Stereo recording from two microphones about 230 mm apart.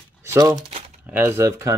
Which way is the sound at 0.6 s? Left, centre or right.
Right.